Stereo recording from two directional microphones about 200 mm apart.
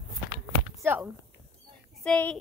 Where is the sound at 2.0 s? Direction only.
10° left (ahead or behind).